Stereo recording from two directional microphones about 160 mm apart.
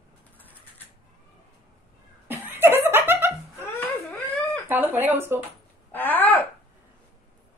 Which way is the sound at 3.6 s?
15° left (ahead or behind).